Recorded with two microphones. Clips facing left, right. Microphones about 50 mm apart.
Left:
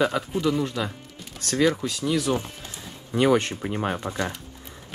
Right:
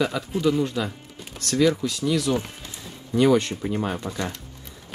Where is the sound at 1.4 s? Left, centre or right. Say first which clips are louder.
Right 1 dB; left.